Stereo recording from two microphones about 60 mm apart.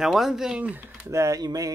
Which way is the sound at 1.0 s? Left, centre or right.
Right.